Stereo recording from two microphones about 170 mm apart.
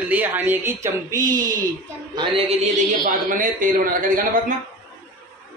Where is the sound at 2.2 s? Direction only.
35° right (ahead or behind).